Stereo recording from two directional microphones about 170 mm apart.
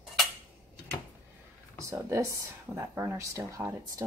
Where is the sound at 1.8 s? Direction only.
15° right (ahead or behind).